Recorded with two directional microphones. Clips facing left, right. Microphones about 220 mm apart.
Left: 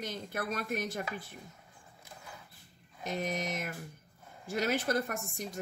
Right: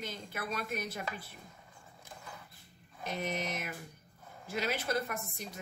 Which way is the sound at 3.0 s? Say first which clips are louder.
Left 2 dB; 45° left (ahead or behind).